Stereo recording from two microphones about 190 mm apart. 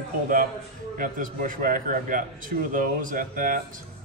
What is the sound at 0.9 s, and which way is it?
A man's voice, 45° right (ahead or behind).